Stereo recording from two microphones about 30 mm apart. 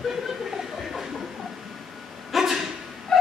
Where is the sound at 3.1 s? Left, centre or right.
Centre.